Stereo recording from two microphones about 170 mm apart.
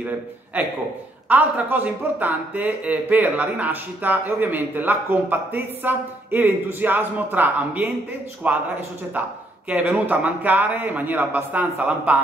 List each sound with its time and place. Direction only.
0.5 s speech: 10° right (ahead or behind)
9.7 s speech: 10° right (ahead or behind)